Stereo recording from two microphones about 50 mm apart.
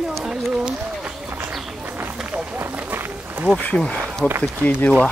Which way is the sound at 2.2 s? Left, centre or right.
Right.